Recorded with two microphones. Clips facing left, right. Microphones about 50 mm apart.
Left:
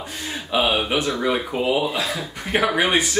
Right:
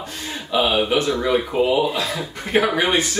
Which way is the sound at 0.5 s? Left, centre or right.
Centre.